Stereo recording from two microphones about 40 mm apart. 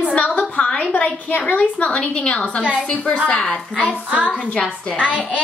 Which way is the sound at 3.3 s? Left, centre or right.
Left.